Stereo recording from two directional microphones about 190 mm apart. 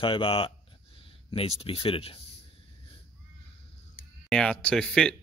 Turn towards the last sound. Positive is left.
turn(degrees=5)  # may be behind; listen again after turning